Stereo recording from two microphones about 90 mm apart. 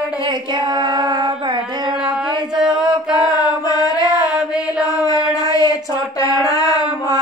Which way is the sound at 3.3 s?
40° left (ahead or behind).